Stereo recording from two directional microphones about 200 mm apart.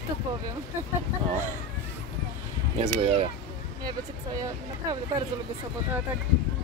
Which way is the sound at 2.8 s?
30° right (ahead or behind).